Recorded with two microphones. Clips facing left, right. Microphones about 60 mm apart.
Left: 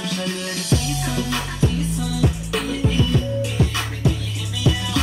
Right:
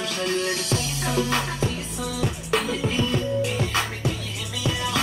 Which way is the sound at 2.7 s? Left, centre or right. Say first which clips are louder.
Left 3 dB; right.